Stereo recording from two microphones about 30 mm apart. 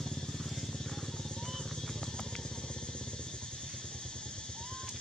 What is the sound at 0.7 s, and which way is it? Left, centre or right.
Music, centre.